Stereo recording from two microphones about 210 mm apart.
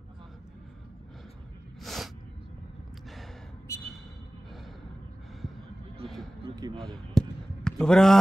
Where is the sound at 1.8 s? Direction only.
Centre (ahead or behind).